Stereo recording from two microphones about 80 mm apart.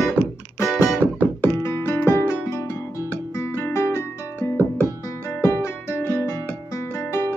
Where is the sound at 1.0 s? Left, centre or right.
Left.